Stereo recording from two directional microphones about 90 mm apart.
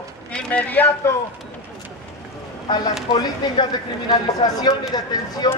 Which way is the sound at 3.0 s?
55° left (ahead or behind).